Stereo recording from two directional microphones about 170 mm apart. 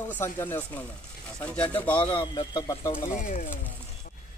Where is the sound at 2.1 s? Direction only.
30° left (ahead or behind).